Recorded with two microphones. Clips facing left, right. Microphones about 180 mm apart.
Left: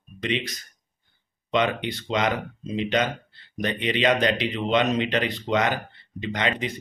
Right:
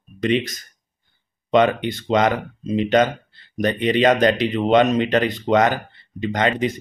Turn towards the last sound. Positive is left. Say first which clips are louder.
# right 6 dB
turn(degrees=-45)  # may be behind; listen again after turning